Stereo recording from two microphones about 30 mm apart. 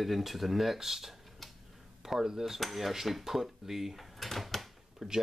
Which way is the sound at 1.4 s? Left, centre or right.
Centre.